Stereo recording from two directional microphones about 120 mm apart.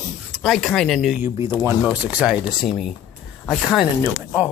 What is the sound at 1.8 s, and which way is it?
Speech, 10° right (ahead or behind).